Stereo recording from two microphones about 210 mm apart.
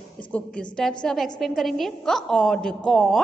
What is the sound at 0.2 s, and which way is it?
A woman's voice, 5° left (ahead or behind).